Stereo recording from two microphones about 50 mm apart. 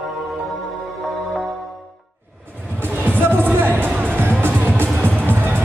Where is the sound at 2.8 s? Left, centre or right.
Right.